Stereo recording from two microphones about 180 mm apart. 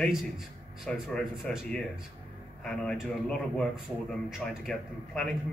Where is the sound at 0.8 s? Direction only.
Centre (ahead or behind).